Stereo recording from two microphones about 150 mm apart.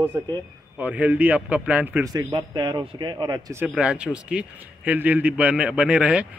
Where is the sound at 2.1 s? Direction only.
25° right (ahead or behind).